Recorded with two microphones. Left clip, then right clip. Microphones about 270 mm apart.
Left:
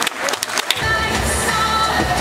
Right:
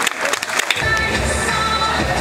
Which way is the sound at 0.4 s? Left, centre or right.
Centre.